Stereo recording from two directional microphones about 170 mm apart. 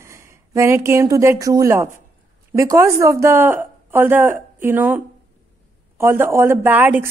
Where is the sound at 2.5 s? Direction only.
15° right (ahead or behind).